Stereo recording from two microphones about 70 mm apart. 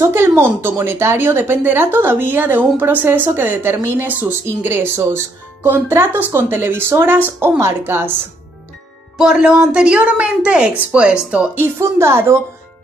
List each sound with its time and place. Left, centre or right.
0.0 s speech: right
9.2 s a woman's voice: centre
11.5 s speech: right